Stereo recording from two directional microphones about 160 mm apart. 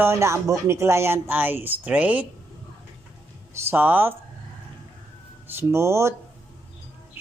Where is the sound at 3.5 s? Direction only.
15° right (ahead or behind).